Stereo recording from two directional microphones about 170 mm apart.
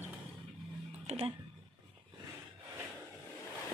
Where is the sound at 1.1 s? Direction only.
40° right (ahead or behind).